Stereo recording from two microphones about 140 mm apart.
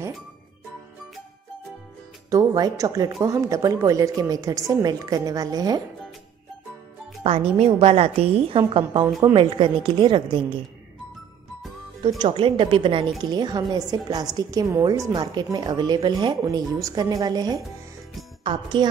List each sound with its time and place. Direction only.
2.3 s a woman's voice: 25° right (ahead or behind)
7.2 s a woman's voice: 45° right (ahead or behind)
12.2 s a woman's voice: 35° right (ahead or behind)